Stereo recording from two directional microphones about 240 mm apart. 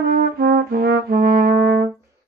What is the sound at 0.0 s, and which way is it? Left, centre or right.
Brass instrument, right.